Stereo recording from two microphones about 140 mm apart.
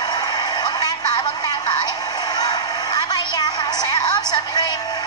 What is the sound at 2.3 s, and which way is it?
Music, 30° left (ahead or behind).